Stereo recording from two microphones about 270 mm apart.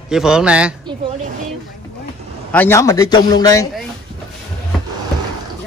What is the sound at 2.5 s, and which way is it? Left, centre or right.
A man's voice, centre.